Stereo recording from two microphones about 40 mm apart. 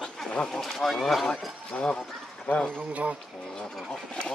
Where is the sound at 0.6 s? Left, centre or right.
Centre.